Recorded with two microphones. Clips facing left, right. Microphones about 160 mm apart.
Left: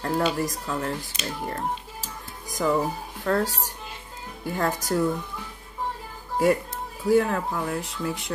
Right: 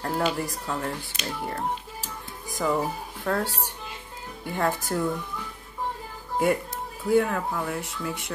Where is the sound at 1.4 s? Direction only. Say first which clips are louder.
Even; 40° left (ahead or behind).